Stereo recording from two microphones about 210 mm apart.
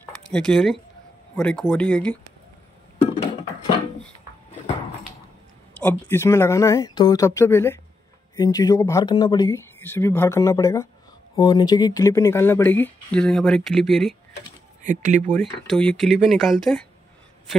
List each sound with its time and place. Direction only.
0.0 s a sound: 5° left (ahead or behind)
1.3 s speech: 5° left (ahead or behind)
5.8 s speech: 10° left (ahead or behind)
14.8 s speech: 35° right (ahead or behind)
15.3 s speech: centre (ahead or behind)